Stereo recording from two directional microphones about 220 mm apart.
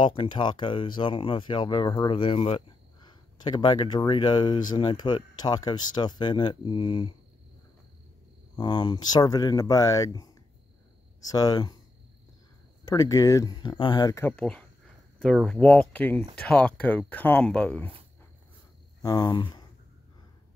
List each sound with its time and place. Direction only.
0.0 s speech: 25° left (ahead or behind)
8.5 s speech: 20° left (ahead or behind)
12.8 s speech: 15° left (ahead or behind)
19.0 s speech: 20° left (ahead or behind)